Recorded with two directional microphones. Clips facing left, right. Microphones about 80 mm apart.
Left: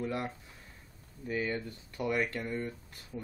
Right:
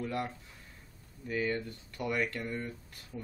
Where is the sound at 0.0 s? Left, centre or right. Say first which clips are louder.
Even; centre.